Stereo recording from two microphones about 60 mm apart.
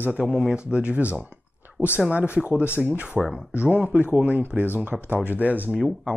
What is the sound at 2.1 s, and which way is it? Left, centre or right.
Speech, right.